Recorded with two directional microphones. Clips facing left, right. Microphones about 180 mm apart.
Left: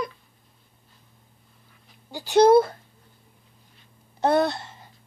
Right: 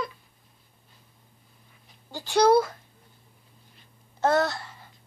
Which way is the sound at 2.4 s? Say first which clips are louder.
Left 4 dB; 25° left (ahead or behind).